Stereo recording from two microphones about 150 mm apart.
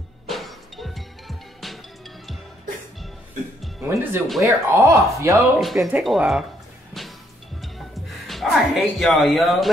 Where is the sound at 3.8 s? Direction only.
20° right (ahead or behind).